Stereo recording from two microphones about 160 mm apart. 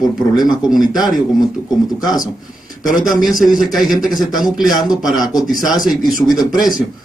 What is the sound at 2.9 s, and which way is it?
Speech, 55° left (ahead or behind).